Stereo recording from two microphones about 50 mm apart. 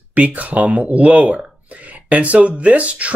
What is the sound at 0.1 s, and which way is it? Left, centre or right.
Speech, right.